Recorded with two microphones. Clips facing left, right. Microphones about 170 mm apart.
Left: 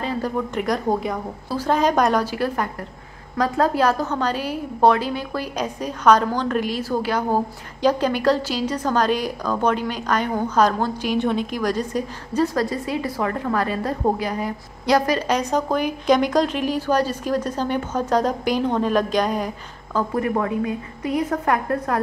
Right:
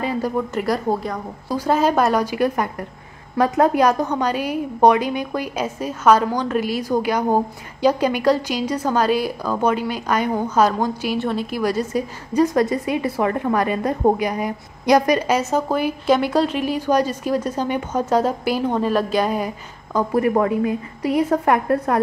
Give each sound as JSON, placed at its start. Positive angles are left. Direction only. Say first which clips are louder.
{"t": 0.6, "sound": "a woman's voice", "louder": "left 1 dB", "side_deg": 0}
{"t": 12.5, "sound": "a woman's voice", "louder": "right 4 dB", "side_deg": -20}
{"t": 21.5, "sound": "a woman's voice", "louder": "right 3 dB", "side_deg": -20}